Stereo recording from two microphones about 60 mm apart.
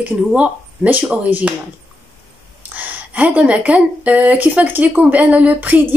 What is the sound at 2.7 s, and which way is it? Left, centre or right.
Speech, right.